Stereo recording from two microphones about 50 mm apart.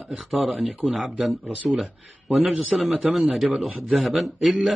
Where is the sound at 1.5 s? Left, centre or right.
Right.